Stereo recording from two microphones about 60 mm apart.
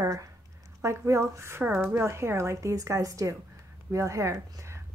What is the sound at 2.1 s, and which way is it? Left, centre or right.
Speech, right.